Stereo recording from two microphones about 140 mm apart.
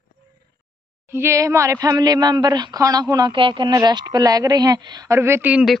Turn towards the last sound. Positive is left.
turn(degrees=-10)  # may be behind; listen again after turning